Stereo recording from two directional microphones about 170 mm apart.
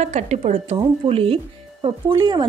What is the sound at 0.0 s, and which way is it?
A woman's voice, 40° right (ahead or behind).